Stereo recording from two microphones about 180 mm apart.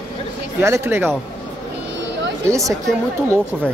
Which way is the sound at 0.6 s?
15° right (ahead or behind).